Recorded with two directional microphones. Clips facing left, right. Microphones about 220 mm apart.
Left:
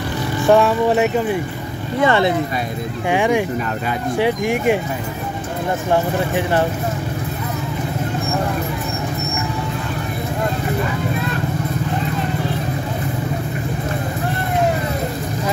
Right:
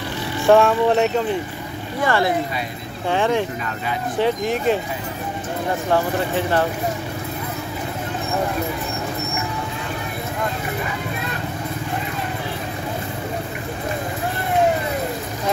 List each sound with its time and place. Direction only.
0.5 s speech: centre (ahead or behind)
2.0 s speech: 20° left (ahead or behind)
5.9 s speech: 15° left (ahead or behind)